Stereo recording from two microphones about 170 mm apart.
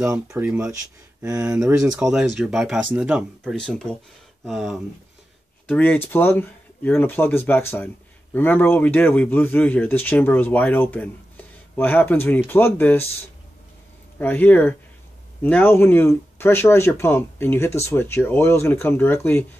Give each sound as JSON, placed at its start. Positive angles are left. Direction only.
{"t": 0.0, "sound": "speech", "side_deg": -10}
{"t": 2.0, "sound": "speech", "side_deg": -5}
{"t": 3.5, "sound": "speech", "side_deg": 5}
{"t": 5.7, "sound": "speech", "side_deg": 10}
{"t": 14.1, "sound": "speech", "side_deg": 10}